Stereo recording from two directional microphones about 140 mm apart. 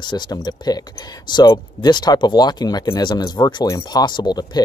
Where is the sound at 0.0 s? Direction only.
30° left (ahead or behind).